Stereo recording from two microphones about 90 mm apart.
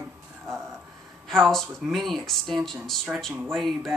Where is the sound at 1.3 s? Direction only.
5° left (ahead or behind).